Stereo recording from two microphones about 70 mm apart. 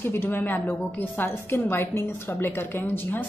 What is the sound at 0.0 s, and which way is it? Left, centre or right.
A woman's voice, left.